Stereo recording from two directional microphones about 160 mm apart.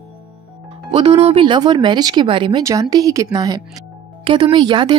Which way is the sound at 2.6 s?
20° right (ahead or behind).